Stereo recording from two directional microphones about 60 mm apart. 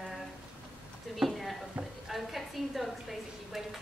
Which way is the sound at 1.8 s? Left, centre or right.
Right.